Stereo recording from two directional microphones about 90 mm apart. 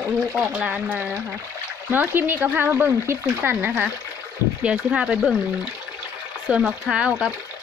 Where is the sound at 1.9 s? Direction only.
20° right (ahead or behind).